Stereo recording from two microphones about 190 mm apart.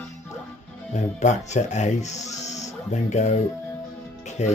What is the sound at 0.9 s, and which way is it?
Speech, 40° left (ahead or behind).